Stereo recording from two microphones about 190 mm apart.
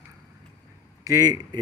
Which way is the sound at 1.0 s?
20° right (ahead or behind).